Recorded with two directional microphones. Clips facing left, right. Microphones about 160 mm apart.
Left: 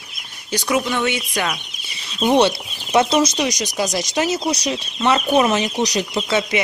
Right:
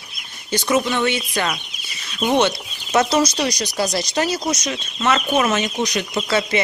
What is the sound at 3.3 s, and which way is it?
Speech, 20° left (ahead or behind).